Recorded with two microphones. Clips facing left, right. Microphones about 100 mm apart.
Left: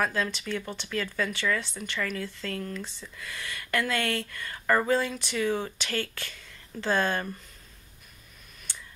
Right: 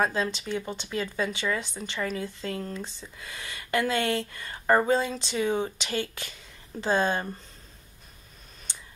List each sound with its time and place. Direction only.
0.0 s speech: 25° right (ahead or behind)
8.7 s clicking: 20° right (ahead or behind)